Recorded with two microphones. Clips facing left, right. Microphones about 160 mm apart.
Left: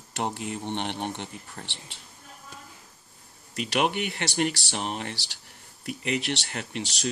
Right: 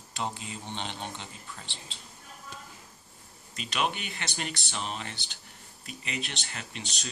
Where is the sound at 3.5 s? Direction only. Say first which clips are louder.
Left 5 dB; 65° left (ahead or behind).